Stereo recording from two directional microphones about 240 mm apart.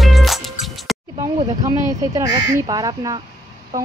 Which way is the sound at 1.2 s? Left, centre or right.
Centre.